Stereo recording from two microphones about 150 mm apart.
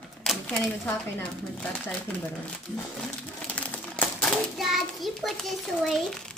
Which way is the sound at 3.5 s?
10° left (ahead or behind).